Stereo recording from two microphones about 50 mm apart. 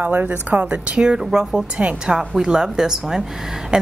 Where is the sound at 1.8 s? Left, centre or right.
Right.